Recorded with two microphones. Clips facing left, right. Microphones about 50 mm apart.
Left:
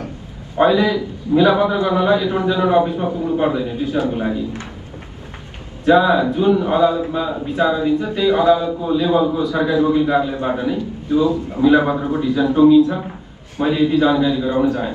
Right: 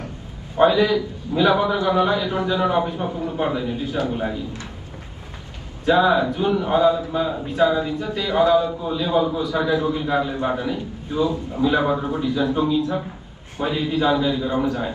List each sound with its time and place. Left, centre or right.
0.6 s a man's voice: left
5.9 s a man's voice: left